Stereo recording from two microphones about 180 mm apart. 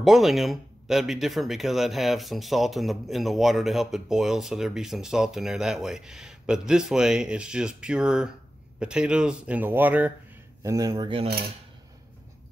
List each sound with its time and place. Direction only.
0.0 s a man's voice: centre (ahead or behind)
10.6 s speech: 20° right (ahead or behind)